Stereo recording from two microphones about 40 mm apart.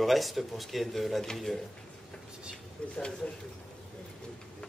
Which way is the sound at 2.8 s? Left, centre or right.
Left.